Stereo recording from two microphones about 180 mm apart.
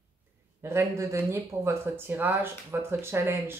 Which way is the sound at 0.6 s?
15° right (ahead or behind).